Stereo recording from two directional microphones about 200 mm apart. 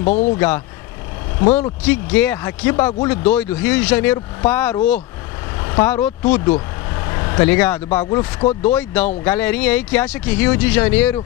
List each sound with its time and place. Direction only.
0.0 s speech: 35° left (ahead or behind)
1.5 s speech: 10° left (ahead or behind)